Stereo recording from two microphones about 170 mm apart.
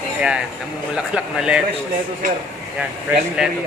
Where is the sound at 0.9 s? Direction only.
5° right (ahead or behind).